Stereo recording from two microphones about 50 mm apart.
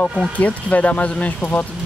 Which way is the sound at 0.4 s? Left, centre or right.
Left.